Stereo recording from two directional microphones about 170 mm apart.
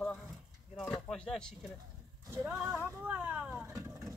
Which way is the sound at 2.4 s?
5° right (ahead or behind).